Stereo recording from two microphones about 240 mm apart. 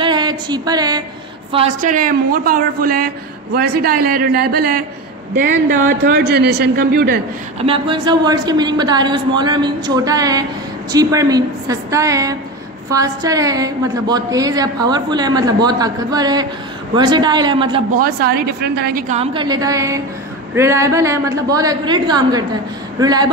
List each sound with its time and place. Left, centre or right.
0.0 s a sound: centre
1.5 s a man's voice: right
7.6 s a woman's voice: right
17.9 s a man's voice: right
19.1 s a woman's voice: centre